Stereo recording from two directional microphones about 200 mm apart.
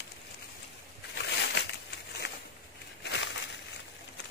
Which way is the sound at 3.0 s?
60° left (ahead or behind).